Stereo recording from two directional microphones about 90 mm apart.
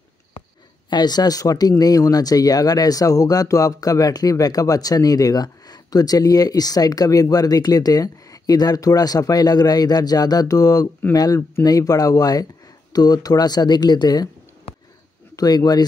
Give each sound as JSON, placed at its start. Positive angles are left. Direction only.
{"t": 0.8, "sound": "speech", "side_deg": 50}
{"t": 15.3, "sound": "speech", "side_deg": 45}